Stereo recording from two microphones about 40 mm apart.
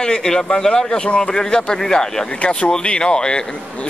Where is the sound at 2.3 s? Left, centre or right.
Left.